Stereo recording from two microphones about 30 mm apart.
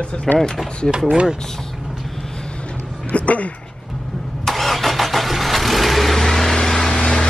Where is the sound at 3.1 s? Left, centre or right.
Left.